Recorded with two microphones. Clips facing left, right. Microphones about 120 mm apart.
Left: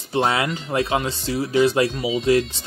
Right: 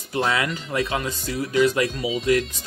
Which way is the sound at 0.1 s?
30° left (ahead or behind).